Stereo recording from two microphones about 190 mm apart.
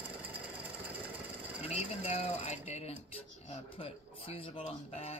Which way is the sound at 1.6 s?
35° left (ahead or behind).